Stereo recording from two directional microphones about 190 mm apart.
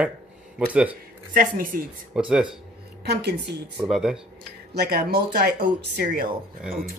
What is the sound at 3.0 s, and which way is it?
Speech, 60° right (ahead or behind).